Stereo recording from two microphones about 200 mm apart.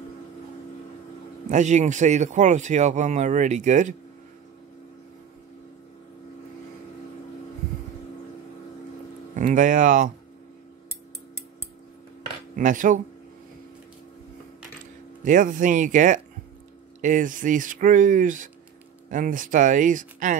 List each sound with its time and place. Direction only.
1.5 s speech: 35° right (ahead or behind)
9.3 s speech: 40° right (ahead or behind)
12.5 s speech: 40° right (ahead or behind)
15.2 s speech: 40° right (ahead or behind)